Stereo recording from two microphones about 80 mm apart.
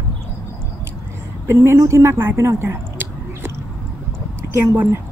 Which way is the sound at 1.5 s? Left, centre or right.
Right.